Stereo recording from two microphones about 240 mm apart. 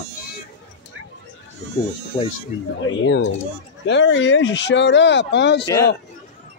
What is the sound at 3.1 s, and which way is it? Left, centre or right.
A man's voice, left.